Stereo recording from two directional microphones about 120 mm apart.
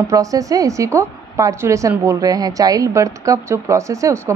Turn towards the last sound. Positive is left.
turn(degrees=-25)  # may be behind; listen again after turning